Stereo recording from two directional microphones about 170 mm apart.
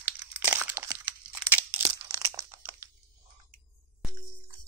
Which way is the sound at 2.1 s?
20° right (ahead or behind).